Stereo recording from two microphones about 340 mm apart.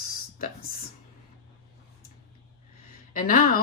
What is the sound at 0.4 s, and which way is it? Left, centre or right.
Speech, left.